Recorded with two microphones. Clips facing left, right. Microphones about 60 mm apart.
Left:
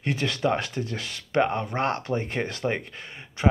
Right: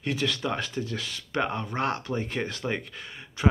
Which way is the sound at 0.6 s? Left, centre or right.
Left.